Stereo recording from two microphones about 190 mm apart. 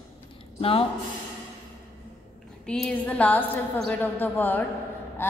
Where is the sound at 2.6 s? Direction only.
5° left (ahead or behind).